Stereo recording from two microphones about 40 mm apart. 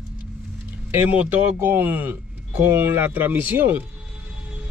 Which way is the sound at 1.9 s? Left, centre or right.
Right.